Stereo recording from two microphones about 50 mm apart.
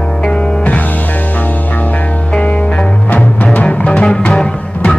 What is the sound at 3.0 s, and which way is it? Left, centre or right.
Music, left.